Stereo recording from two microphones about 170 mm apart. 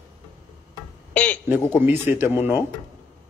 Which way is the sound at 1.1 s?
10° left (ahead or behind).